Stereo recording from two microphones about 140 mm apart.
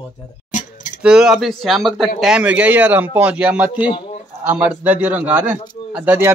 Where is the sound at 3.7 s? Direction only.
40° left (ahead or behind).